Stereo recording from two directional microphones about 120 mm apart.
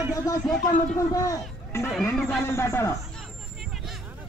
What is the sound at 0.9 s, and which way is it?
Speech, 30° left (ahead or behind).